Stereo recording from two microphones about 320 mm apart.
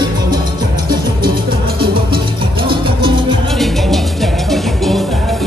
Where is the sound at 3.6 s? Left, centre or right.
Centre.